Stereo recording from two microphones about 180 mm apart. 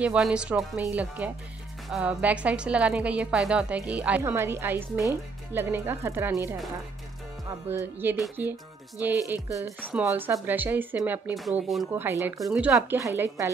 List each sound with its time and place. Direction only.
0.0 s a woman's voice: 5° right (ahead or behind)
7.7 s a woman's voice: 10° right (ahead or behind)
11.9 s a woman's voice: 15° right (ahead or behind)